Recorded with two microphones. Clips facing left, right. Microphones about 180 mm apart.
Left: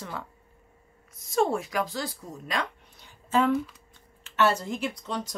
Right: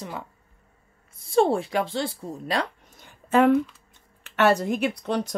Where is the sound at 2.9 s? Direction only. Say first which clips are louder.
Right 5 dB; 55° right (ahead or behind).